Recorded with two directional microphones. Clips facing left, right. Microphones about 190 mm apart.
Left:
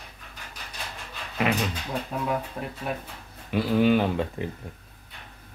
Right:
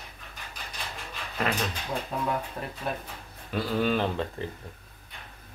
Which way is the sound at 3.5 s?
10° left (ahead or behind).